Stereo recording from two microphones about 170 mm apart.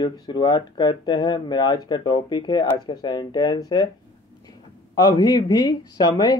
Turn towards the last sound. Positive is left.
turn(degrees=25)  # may be behind; listen again after turning